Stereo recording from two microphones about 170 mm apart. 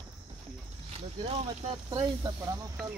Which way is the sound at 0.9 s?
35° right (ahead or behind).